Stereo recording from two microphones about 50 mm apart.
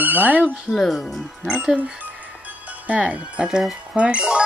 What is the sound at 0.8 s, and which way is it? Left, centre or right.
Speech, centre.